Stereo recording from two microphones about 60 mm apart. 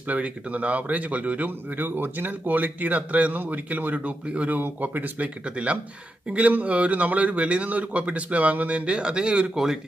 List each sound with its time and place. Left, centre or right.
0.1 s speech: right